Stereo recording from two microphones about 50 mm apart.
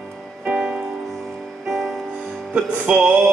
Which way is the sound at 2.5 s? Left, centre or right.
Right.